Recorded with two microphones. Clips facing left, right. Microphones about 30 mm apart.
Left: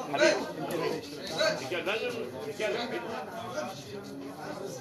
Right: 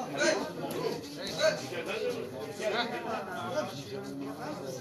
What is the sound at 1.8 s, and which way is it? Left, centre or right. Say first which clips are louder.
Speech: left 1 dB; left.